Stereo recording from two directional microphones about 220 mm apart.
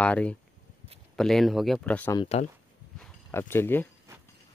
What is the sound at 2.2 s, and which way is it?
Speech, 30° left (ahead or behind).